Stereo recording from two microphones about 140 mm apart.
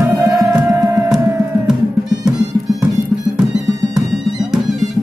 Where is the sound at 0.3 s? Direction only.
25° right (ahead or behind).